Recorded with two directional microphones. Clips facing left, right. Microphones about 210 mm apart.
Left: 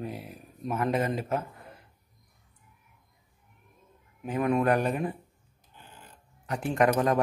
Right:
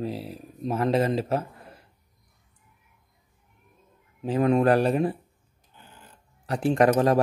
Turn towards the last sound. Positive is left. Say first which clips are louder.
# right 4 dB
turn(degrees=-35)  # may be behind; listen again after turning